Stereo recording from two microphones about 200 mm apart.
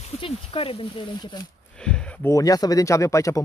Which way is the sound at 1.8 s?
5° left (ahead or behind).